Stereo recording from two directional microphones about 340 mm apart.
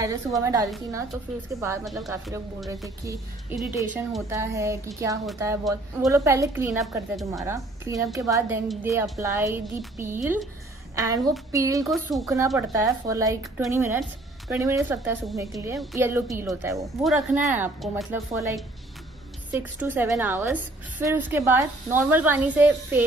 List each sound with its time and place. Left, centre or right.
0.0 s a woman's voice: centre